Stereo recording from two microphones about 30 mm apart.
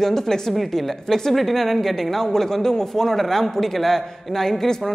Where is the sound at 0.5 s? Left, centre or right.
Centre.